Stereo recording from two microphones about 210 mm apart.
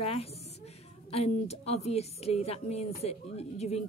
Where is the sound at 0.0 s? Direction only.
30° left (ahead or behind).